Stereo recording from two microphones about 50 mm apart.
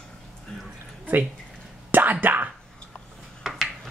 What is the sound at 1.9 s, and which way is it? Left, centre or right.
Whispering, right.